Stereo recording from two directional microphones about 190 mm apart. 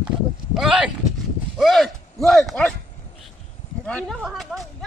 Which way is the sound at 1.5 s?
Centre (ahead or behind).